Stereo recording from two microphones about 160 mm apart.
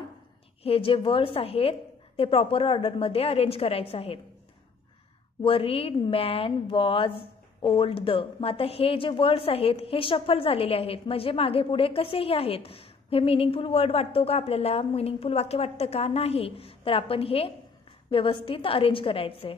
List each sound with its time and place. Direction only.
0.7 s speech: 35° left (ahead or behind)
5.4 s speech: 35° left (ahead or behind)